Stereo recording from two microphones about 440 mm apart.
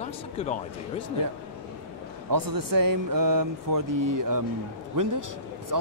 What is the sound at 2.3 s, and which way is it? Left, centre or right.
Speech, right.